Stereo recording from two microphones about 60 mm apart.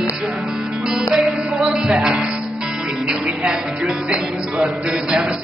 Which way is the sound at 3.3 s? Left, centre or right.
Centre.